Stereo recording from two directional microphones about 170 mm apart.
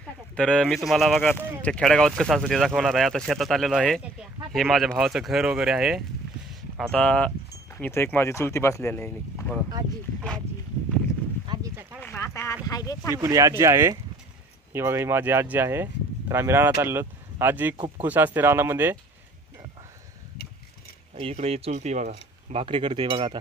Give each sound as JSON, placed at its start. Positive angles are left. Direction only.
{"t": 0.4, "sound": "speech", "side_deg": 5}
{"t": 11.4, "sound": "a sound", "side_deg": -25}
{"t": 12.0, "sound": "a sound", "side_deg": 15}
{"t": 12.6, "sound": "speech", "side_deg": 20}
{"t": 13.1, "sound": "speech", "side_deg": -15}
{"t": 17.7, "sound": "speech", "side_deg": -30}
{"t": 18.0, "sound": "speech", "side_deg": -10}
{"t": 21.2, "sound": "speech", "side_deg": -35}